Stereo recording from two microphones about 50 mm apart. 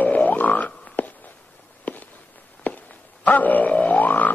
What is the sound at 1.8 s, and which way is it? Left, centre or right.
Fireworks, left.